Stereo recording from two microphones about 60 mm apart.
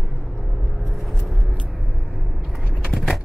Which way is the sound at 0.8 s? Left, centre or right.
Centre.